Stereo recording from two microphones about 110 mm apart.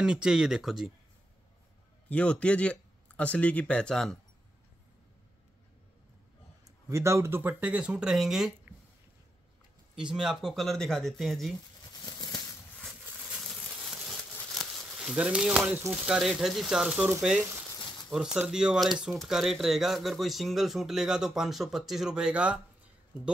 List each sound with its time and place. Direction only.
0.0 s speech: 5° right (ahead or behind)
2.0 s speech: 10° left (ahead or behind)
6.9 s speech: 25° right (ahead or behind); by 8.5 s centre (ahead or behind)
9.9 s speech: 5° right (ahead or behind)
12.0 s a sound: 40° left (ahead or behind)
13.2 s a sound: 5° right (ahead or behind)
15.9 s speech: 5° right (ahead or behind)